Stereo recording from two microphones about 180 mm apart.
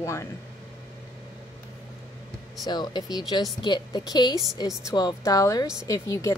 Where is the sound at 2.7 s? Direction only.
25° left (ahead or behind).